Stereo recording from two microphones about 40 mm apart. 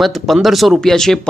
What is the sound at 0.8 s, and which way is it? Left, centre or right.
Speech, centre.